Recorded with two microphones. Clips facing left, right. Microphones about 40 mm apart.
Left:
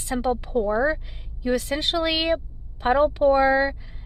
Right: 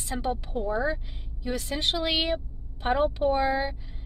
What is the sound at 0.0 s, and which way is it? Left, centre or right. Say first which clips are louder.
Speech: left 6 dB; left.